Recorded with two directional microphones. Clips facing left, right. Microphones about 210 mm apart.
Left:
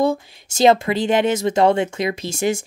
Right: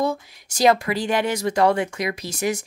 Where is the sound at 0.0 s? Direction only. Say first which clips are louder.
Left 5 dB; 25° left (ahead or behind).